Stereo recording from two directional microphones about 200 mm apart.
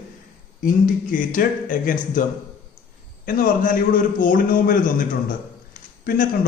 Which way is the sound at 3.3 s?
45° left (ahead or behind).